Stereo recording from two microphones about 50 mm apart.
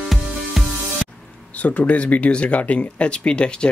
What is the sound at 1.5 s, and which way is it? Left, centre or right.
Speech, left.